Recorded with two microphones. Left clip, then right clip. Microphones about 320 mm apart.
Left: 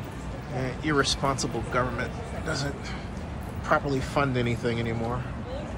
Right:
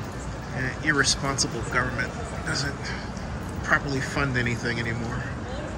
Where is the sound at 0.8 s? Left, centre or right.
Centre.